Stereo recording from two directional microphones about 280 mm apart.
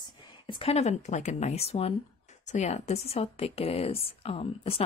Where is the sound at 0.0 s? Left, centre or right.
Centre.